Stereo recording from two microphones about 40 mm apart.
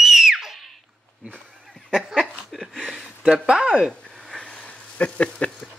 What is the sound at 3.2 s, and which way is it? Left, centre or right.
Speech, right.